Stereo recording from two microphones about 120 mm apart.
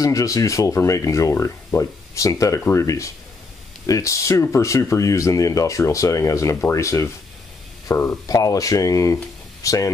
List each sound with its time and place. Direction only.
0.0 s speech: 30° left (ahead or behind)
8.3 s speech: 30° left (ahead or behind)